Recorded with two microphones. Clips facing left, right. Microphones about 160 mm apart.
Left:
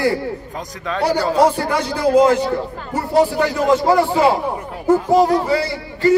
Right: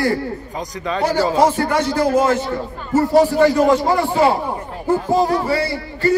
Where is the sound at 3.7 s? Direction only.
20° left (ahead or behind).